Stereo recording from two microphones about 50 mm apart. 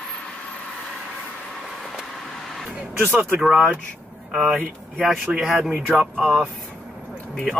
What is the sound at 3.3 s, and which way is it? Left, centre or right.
Speech, centre.